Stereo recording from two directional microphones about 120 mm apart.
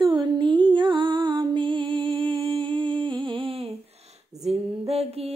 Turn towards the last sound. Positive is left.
turn(degrees=-55)  # may be behind; listen again after turning